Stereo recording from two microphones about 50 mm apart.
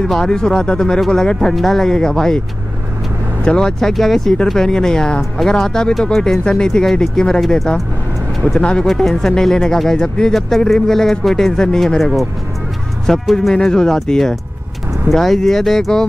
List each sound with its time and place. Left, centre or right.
0.0 s speech: centre
3.4 s speech: centre
8.5 s speech: centre
8.8 s speech: centre
10.3 s speech: centre